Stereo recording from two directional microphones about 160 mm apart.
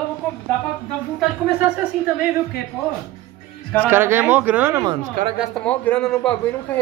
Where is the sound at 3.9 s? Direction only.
15° right (ahead or behind).